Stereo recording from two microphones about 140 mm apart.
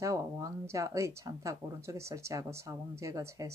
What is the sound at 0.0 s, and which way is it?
A woman's voice, 25° right (ahead or behind).